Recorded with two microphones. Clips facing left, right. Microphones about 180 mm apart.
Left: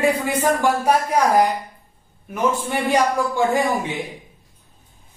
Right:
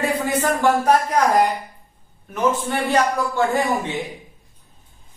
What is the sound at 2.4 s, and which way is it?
A man's voice, 10° left (ahead or behind).